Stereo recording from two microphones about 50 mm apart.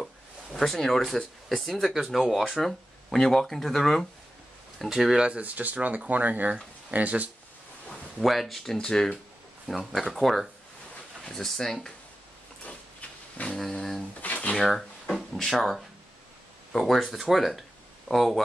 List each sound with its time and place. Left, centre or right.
0.0 s a sound: centre
1.6 s speech: centre
2.6 s speech: centre
5.2 s speech: right
8.2 s speech: centre
8.7 s speech: centre
13.6 s speech: centre
14.2 s a sound: left
14.6 s speech: centre